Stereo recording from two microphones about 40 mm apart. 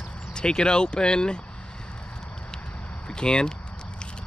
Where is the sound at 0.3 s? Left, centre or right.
Left.